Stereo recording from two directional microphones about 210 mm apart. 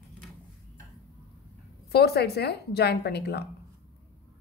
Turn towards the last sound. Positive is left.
turn(degrees=50)  # may be behind; listen again after turning